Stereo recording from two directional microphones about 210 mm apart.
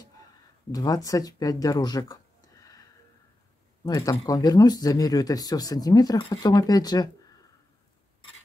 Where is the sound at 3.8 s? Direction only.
15° left (ahead or behind).